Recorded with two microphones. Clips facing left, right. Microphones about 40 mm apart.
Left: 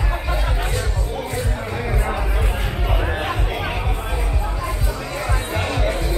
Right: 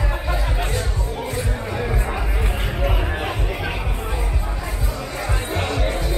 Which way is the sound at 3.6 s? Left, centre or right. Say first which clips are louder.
Left 2 dB; centre.